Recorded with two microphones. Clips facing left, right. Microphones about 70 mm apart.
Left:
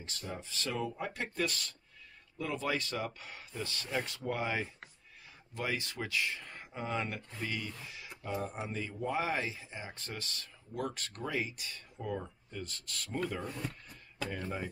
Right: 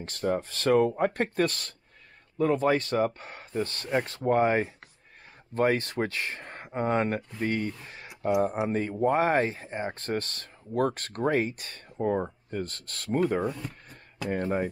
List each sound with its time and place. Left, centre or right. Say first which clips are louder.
0.0 s speech: right 15 dB; right
13.5 s speech: right 6 dB; centre
14.3 s speech: right 13 dB; right